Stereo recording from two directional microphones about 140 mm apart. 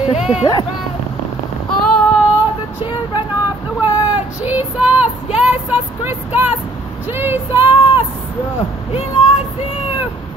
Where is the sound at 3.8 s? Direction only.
10° right (ahead or behind).